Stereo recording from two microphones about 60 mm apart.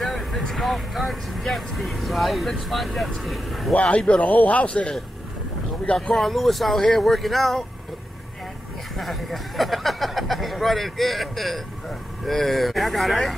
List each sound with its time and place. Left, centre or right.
0.0 s vehicle: centre
0.4 s speech: centre
3.7 s a man's voice: centre
5.9 s speech: centre
8.9 s speech: centre